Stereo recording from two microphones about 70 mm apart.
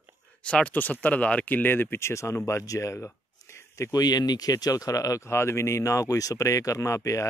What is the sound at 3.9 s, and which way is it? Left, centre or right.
Speech, left.